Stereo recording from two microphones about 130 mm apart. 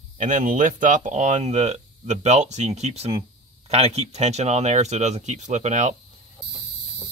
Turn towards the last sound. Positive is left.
turn(degrees=-65)  # may be behind; listen again after turning